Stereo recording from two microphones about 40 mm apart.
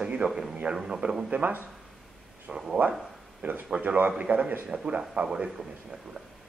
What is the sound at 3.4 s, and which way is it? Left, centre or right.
Speech, right.